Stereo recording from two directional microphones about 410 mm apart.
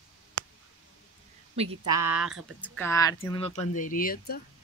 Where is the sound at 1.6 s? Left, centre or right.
Centre; by 4.4 s left.